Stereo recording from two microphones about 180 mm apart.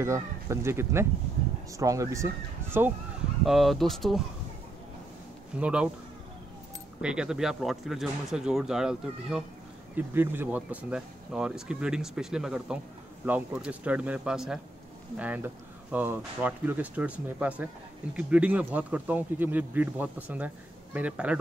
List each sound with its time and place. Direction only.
0.0 s speech: 15° right (ahead or behind)
3.4 s speech: centre (ahead or behind)
5.6 s speech: 5° right (ahead or behind)
7.0 s speech: 5° right (ahead or behind)